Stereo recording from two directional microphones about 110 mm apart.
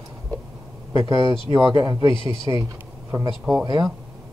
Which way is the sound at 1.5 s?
35° right (ahead or behind).